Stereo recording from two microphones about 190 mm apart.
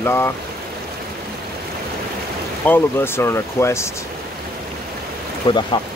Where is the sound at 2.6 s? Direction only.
10° left (ahead or behind).